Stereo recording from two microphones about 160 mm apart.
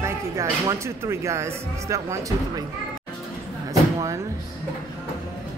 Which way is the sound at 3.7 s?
20° right (ahead or behind).